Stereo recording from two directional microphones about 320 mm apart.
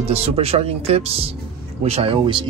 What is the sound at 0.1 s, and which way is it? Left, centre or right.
Speech, centre.